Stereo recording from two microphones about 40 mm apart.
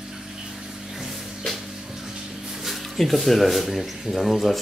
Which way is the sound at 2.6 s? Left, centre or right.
Centre.